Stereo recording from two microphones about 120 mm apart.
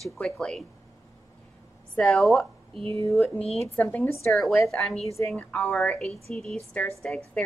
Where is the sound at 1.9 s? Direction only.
5° left (ahead or behind).